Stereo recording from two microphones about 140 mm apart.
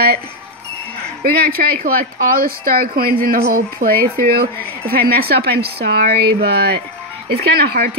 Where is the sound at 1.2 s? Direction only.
90° right.